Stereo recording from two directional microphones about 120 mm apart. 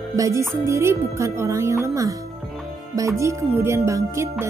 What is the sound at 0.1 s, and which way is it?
Speech, 25° right (ahead or behind).